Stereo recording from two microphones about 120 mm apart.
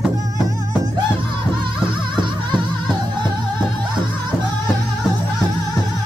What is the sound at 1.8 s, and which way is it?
Music, 40° right (ahead or behind).